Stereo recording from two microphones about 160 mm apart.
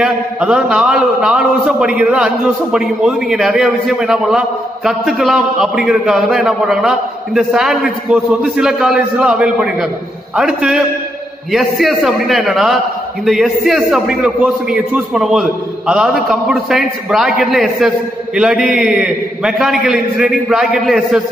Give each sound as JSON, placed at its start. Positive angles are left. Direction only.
{"t": 0.0, "sound": "a man's voice", "side_deg": -5}